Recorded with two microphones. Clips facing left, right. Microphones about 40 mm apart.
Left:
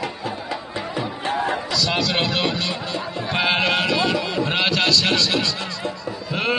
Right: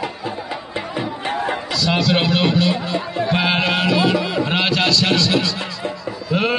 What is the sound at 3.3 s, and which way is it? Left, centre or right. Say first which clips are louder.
Music: right 1 dB; centre.